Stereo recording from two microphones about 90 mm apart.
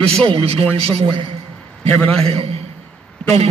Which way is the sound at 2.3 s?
90° right.